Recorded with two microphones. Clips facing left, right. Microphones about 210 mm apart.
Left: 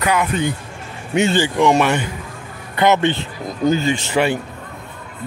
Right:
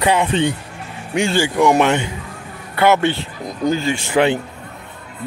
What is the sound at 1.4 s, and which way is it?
Speech, 15° right (ahead or behind).